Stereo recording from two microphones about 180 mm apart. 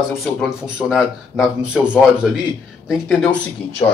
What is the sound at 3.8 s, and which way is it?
Speech, 15° left (ahead or behind).